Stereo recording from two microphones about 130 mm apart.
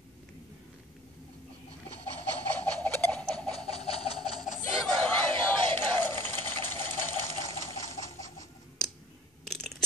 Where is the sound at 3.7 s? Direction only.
50° left (ahead or behind).